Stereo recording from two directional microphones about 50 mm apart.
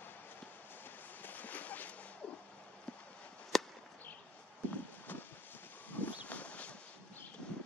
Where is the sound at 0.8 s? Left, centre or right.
Left.